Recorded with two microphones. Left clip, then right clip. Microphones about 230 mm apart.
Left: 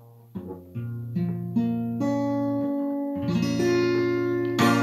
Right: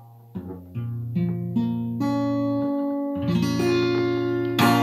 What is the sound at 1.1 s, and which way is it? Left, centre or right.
Guitar, centre.